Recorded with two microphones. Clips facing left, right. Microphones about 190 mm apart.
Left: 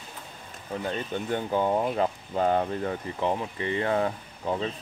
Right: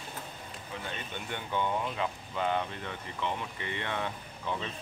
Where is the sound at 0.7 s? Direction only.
40° left (ahead or behind).